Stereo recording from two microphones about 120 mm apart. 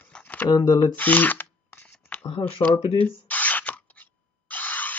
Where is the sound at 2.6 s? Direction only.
20° left (ahead or behind).